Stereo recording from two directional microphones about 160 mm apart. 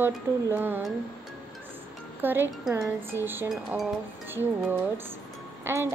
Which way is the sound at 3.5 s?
Centre (ahead or behind).